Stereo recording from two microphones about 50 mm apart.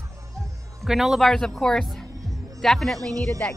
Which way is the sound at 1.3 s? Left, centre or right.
Centre.